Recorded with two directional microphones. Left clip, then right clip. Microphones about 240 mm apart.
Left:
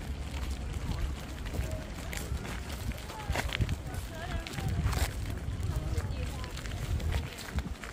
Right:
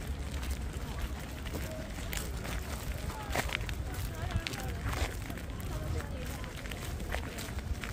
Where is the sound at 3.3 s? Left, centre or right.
Centre.